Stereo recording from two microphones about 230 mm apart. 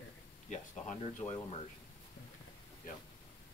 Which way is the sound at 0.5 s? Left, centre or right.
Left.